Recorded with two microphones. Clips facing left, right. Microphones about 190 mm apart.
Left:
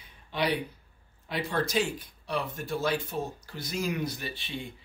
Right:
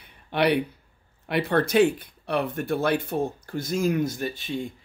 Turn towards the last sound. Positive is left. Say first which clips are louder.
# right 8 dB
turn(degrees=-45)  # may be behind; listen again after turning